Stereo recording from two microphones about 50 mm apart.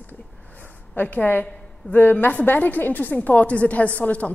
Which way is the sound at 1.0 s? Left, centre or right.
Left.